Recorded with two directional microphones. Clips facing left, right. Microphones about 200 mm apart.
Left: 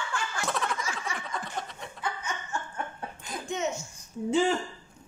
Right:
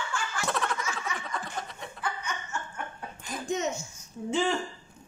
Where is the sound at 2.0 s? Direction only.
25° left (ahead or behind).